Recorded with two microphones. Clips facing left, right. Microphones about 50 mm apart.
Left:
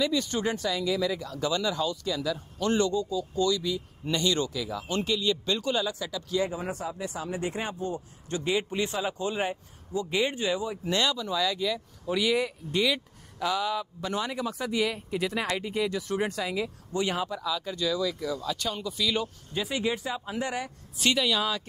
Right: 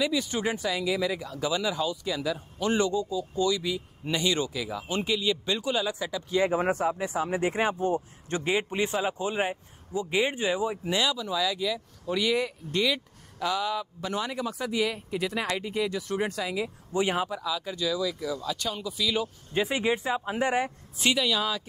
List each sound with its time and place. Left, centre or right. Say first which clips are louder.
0.0 s a man's voice: even; centre
11.0 s speech: left 1 dB; centre
16.6 s a man's voice: right 2 dB; centre
17.4 s speech: even; centre
19.5 s a man's voice: right 3 dB; right
21.1 s speech: even; centre